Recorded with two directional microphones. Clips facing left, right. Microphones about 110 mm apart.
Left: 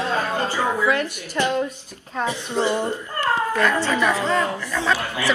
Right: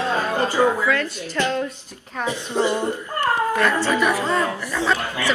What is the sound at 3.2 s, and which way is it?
Cat, 15° right (ahead or behind).